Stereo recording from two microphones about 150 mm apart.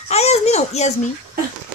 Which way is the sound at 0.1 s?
45° left (ahead or behind).